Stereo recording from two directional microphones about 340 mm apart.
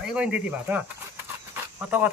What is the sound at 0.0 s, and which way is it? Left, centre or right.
Speech, centre.